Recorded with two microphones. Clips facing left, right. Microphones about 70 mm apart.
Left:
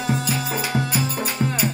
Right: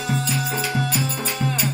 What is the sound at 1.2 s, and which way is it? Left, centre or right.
Music, centre.